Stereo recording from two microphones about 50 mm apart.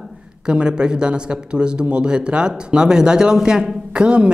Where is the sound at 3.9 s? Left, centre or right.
Right.